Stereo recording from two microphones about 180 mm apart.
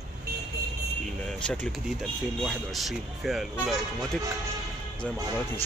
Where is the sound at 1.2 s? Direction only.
5° left (ahead or behind).